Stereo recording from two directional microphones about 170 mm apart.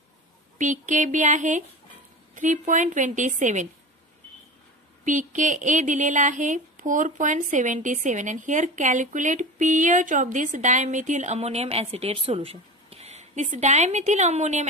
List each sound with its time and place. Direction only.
0.6 s speech: 50° right (ahead or behind)
5.0 s speech: 45° right (ahead or behind)